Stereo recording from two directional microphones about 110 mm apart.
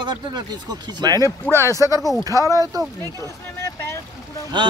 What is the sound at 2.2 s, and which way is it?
Speech, 30° right (ahead or behind).